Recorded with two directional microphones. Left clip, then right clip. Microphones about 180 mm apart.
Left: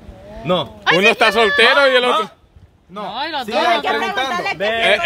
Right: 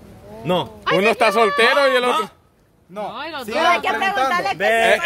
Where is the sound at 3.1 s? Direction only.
60° left (ahead or behind).